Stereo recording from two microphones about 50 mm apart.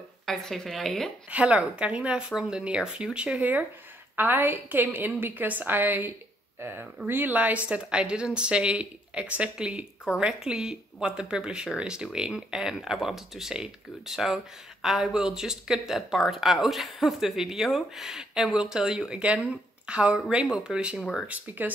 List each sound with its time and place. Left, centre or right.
0.3 s a woman's voice: centre
1.3 s a woman's voice: right
4.2 s a woman's voice: right; by 21.0 s centre
21.0 s speech: centre
21.3 s a woman's voice: right